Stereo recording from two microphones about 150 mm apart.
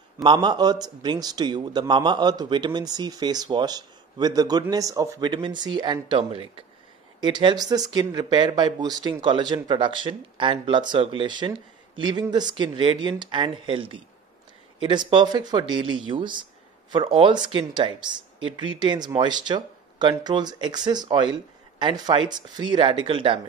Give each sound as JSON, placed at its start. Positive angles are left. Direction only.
{"t": 0.2, "sound": "a man's voice", "side_deg": -30}
{"t": 15.0, "sound": "speech", "side_deg": -30}